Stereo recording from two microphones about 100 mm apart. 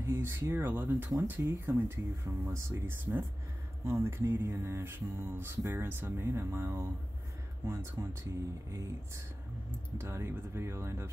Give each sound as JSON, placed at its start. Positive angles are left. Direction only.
{"t": 0.0, "sound": "speech", "side_deg": -25}
{"t": 1.2, "sound": "music", "side_deg": -20}